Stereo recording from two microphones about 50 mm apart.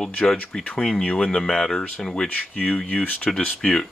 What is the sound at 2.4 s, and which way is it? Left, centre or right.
Speech, left.